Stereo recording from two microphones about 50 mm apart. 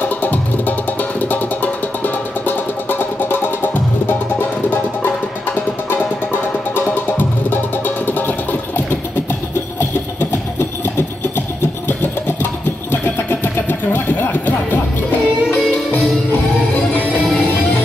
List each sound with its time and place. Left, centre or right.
0.0 s music: left
5.5 s music: left
12.9 s music: left